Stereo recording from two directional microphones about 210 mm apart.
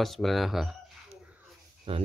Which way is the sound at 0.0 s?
Centre (ahead or behind).